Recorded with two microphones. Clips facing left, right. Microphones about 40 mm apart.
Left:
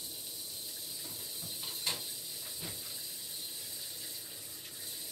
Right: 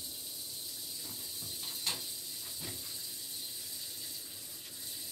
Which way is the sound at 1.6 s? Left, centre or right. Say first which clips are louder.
Left 1 dB; centre.